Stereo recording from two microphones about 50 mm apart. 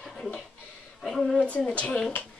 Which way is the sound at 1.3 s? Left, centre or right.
Left.